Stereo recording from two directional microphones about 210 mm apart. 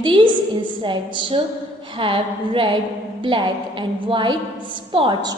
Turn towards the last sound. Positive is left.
turn(degrees=-20)  # may be behind; listen again after turning